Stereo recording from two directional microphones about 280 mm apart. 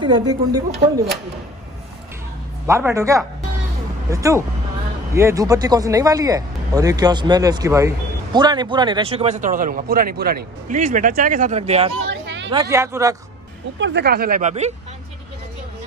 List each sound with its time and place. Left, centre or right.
0.0 s speech: centre
2.6 s speech: centre
12.1 s a sound: right
12.4 s speech: centre
13.7 s speech: right